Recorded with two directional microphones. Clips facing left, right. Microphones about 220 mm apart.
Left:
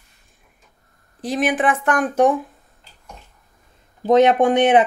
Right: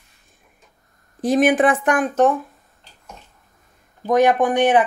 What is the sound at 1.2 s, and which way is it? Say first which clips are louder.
Speech: right 5 dB; 45° right (ahead or behind).